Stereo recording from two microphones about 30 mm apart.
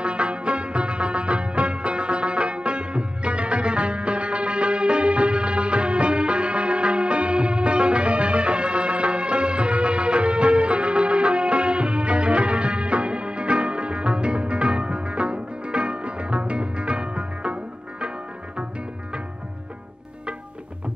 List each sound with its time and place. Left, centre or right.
0.0 s music: right